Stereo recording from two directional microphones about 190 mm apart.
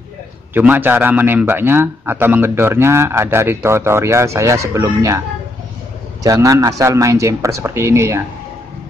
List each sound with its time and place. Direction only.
0.6 s a man's voice: 10° right (ahead or behind)
6.2 s a man's voice: 15° right (ahead or behind)